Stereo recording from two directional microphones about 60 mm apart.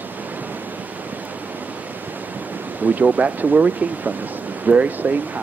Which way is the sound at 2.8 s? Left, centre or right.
Right.